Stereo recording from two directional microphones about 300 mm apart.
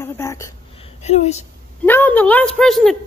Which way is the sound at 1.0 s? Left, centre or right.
Left.